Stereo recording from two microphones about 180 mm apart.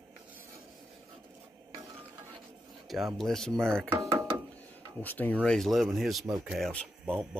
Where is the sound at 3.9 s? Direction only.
15° right (ahead or behind).